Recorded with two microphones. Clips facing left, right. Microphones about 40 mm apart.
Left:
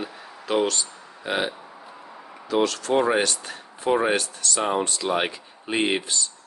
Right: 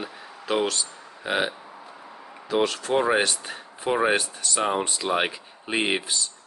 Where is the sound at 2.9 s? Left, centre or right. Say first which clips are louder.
Even; centre.